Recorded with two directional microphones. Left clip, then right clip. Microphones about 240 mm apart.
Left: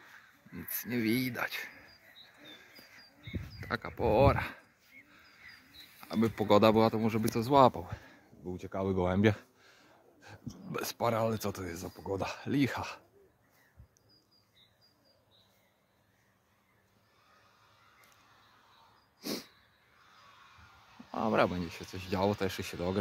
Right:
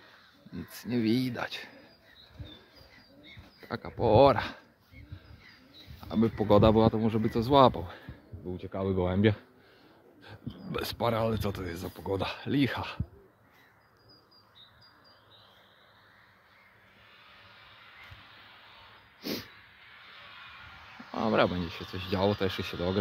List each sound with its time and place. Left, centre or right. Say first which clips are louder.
0.8 s speech: right 3 dB; centre
3.6 s speech: right 2 dB; centre
4.1 s speech: right 6 dB; centre
5.9 s speech: right 3 dB; centre
8.5 s speech: right 2 dB; centre
19.2 s hiss: right 3 dB; centre
21.1 s speech: right 3 dB; centre